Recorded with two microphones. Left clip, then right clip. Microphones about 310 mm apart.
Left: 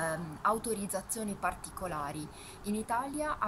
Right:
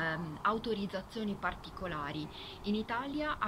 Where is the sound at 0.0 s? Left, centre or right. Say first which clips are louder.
Left 1 dB; centre.